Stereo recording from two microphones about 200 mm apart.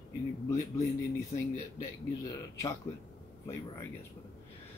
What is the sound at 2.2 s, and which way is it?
Speech, 15° left (ahead or behind).